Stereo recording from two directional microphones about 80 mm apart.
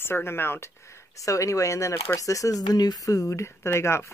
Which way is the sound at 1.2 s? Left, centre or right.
Left.